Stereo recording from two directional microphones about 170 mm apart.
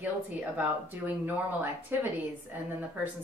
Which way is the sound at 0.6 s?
10° right (ahead or behind).